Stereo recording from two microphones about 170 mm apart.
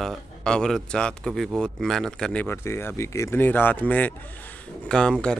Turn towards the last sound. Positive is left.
turn(degrees=5)  # may be behind; listen again after turning